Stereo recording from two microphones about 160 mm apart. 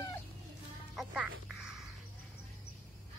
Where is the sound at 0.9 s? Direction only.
Centre (ahead or behind).